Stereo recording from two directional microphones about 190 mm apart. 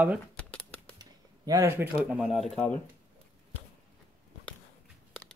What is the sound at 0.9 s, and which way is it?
Speech, 20° right (ahead or behind).